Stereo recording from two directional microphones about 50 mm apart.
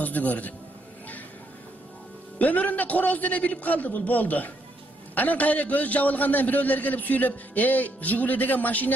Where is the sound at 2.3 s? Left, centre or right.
Left.